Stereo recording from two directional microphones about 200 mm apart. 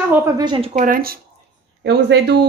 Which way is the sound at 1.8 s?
55° right (ahead or behind).